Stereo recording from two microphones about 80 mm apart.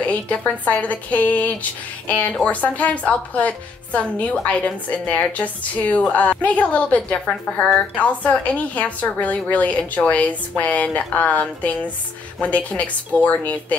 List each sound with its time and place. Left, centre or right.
0.0 s a woman's voice: centre